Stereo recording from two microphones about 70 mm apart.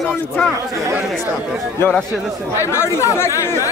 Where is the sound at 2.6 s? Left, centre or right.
Left.